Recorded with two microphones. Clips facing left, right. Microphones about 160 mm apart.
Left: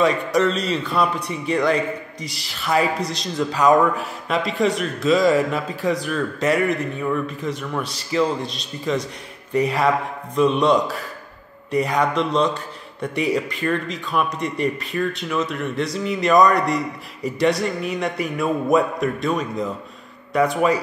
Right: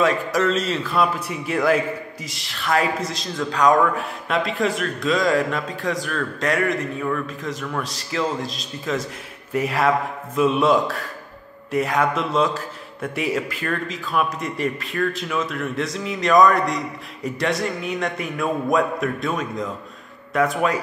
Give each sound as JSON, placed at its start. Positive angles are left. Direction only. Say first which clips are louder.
{"t": 0.0, "sound": "a man's voice", "louder": "left 2 dB", "side_deg": 0}